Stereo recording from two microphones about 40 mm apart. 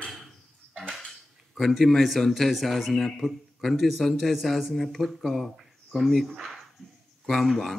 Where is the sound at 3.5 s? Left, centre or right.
Centre.